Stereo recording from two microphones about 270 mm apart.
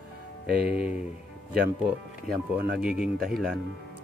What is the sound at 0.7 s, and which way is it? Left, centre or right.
Speech, centre.